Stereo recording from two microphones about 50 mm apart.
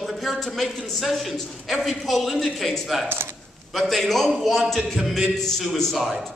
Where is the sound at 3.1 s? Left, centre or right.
Right.